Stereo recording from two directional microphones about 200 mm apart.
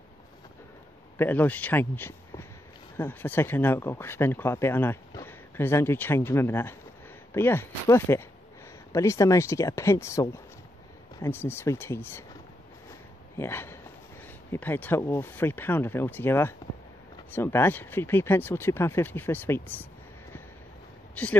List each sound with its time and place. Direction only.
1.1 s a man's voice: 10° left (ahead or behind)
13.4 s speech: 10° left (ahead or behind)
21.1 s a sound: 5° left (ahead or behind)